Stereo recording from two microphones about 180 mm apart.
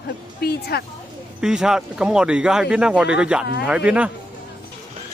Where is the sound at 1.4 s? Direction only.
5° right (ahead or behind).